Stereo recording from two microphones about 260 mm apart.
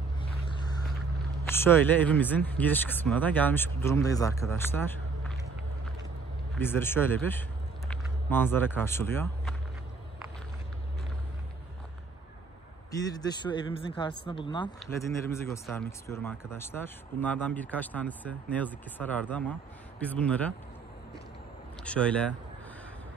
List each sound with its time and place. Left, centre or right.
1.5 s speech: centre
6.6 s speech: centre
12.9 s speech: centre
21.8 s speech: centre